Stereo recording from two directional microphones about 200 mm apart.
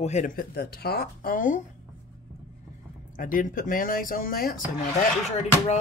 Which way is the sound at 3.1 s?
40° left (ahead or behind).